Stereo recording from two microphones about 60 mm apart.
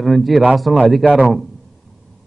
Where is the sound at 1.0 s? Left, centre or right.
Right.